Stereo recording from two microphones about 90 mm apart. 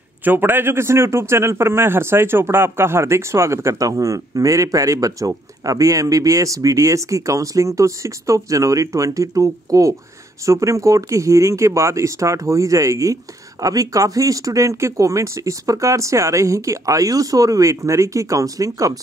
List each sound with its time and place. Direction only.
0.2 s a man's voice: 20° right (ahead or behind); by 18.9 s 40° right (ahead or behind)